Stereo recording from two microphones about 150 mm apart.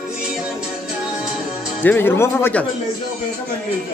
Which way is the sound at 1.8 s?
15° left (ahead or behind).